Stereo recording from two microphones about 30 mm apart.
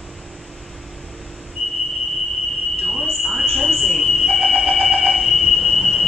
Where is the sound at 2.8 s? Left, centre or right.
Centre.